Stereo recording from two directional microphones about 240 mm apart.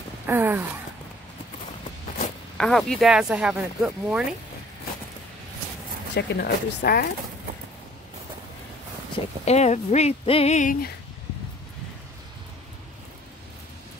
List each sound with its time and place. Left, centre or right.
0.3 s a sound: centre
2.5 s speech: centre
6.1 s speech: left
9.4 s speech: left